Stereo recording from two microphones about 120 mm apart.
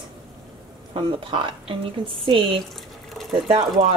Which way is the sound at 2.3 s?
45° right (ahead or behind).